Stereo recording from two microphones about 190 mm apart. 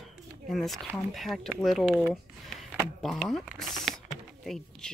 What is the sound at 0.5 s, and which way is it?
Speech, centre (ahead or behind).